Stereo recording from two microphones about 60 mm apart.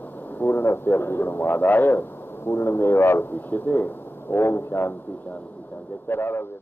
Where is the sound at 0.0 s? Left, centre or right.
Left.